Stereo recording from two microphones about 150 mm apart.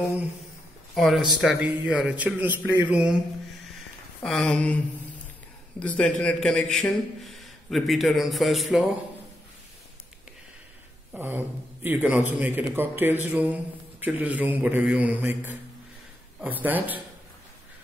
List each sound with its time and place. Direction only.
0.9 s a man's voice: centre (ahead or behind)
4.2 s a man's voice: 5° left (ahead or behind)
11.1 s a man's voice: 15° right (ahead or behind)